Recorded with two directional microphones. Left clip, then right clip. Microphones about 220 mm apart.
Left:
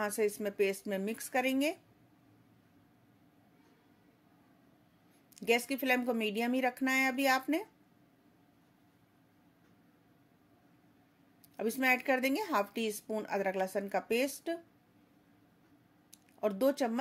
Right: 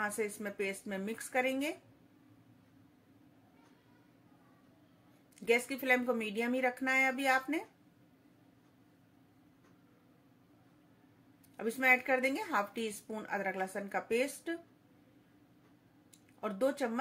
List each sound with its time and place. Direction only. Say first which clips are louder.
0.0 s a woman's voice: left 4 dB; 45° left (ahead or behind)
5.3 s a woman's voice: even; 45° left (ahead or behind)
11.5 s a woman's voice: right 1 dB; 45° left (ahead or behind)
16.3 s a woman's voice: left 3 dB; 45° left (ahead or behind)